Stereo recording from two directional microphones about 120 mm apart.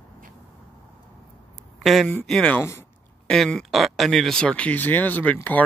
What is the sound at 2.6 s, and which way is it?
Speech, 20° left (ahead or behind).